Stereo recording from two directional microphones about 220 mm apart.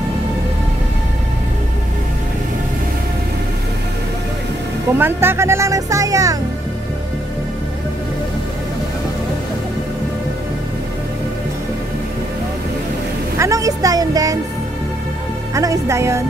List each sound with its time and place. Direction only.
4.9 s speech: 10° right (ahead or behind)
13.4 s speech: 15° right (ahead or behind)
15.5 s speech: 15° right (ahead or behind)